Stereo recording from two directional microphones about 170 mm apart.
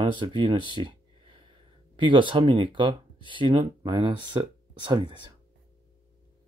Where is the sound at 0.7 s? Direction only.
30° right (ahead or behind).